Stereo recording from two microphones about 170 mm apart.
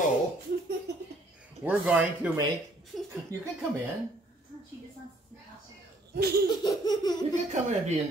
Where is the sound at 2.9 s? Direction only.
Centre (ahead or behind).